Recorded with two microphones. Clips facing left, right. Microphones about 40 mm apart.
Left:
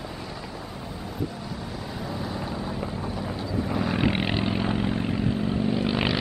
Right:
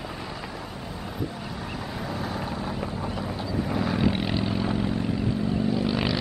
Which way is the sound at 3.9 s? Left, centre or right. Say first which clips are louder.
Left 1 dB; left.